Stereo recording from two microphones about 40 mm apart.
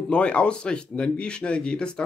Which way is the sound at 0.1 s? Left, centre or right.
Left.